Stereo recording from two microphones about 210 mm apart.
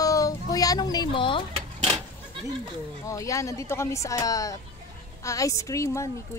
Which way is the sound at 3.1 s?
15° left (ahead or behind).